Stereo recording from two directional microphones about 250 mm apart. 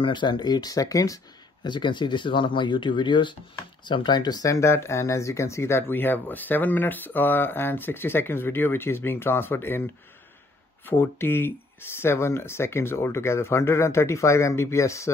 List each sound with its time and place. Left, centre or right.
0.0 s speech: centre
10.9 s speech: centre